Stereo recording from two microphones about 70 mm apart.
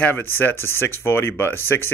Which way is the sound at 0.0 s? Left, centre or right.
Left.